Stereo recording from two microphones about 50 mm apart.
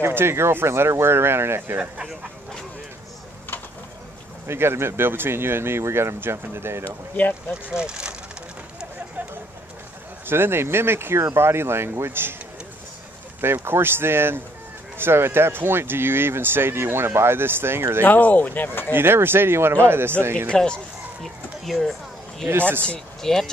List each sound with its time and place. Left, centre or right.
0.0 s speech: right
4.5 s speech: right
6.8 s speech: left
7.7 s speech: centre
10.2 s speech: right
13.4 s speech: right
18.0 s speech: left
18.9 s speech: right
20.4 s speech: centre
21.2 s a sound: centre
22.5 s speech: right
23.2 s speech: centre